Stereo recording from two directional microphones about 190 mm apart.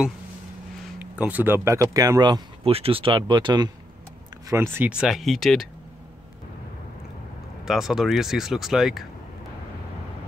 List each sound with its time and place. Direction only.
0.9 s speech: 5° right (ahead or behind); by 3.7 s 25° right (ahead or behind)
4.5 s speech: 10° right (ahead or behind)
7.6 s speech: centre (ahead or behind)